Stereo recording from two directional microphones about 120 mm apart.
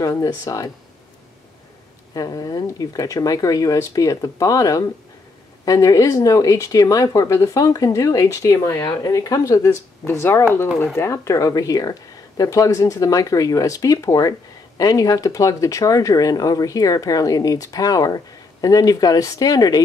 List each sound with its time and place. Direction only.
0.0 s speech: 30° left (ahead or behind)
2.1 s speech: 30° left (ahead or behind)